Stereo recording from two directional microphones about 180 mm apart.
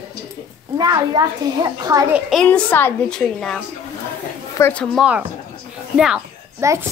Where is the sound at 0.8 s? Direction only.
20° right (ahead or behind).